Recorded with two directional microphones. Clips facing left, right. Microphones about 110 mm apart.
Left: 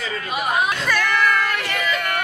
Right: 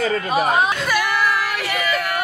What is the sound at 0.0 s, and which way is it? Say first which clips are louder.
Speech: right 6 dB; 40° right (ahead or behind).